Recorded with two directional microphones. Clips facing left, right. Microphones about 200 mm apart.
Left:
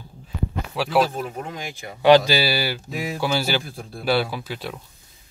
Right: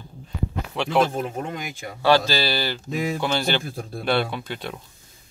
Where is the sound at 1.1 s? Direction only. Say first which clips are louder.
Right 2 dB; 50° right (ahead or behind).